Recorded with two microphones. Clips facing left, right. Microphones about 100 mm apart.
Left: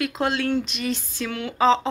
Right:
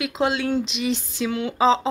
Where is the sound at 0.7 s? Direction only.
15° right (ahead or behind).